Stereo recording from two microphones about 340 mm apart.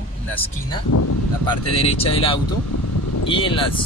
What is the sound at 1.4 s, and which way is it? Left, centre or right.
Speech, centre.